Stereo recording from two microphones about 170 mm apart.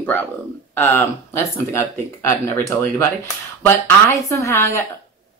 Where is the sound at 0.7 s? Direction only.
15° left (ahead or behind).